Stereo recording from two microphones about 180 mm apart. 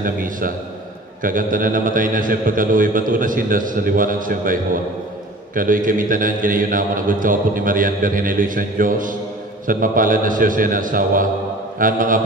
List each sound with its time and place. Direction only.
0.0 s a man's voice: 50° right (ahead or behind)